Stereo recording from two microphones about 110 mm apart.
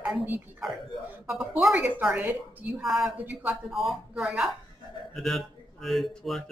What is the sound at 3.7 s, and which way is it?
A man's voice, centre (ahead or behind).